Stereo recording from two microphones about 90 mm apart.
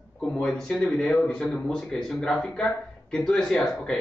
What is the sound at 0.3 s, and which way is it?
Speech, 10° left (ahead or behind).